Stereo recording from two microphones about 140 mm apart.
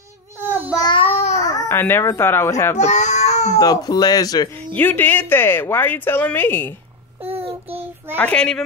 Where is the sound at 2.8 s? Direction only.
55° left (ahead or behind).